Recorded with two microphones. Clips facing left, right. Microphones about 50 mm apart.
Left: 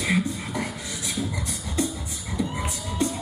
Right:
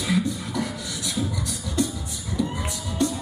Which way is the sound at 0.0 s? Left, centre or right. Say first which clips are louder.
Even; left.